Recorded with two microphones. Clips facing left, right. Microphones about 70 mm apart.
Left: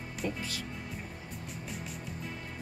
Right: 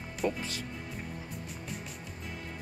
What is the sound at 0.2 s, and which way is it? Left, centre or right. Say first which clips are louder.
Speech: right 5 dB; right.